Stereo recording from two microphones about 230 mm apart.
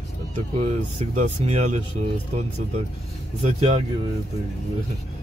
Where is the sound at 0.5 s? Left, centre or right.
Right.